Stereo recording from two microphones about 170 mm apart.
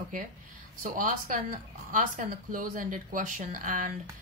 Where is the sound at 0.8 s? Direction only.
55° right (ahead or behind).